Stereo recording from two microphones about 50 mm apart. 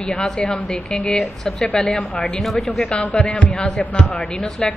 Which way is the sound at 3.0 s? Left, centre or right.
Left.